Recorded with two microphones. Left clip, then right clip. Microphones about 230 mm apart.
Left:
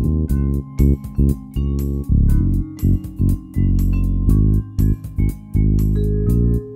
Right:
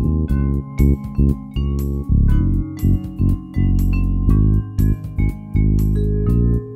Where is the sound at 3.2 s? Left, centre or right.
Centre.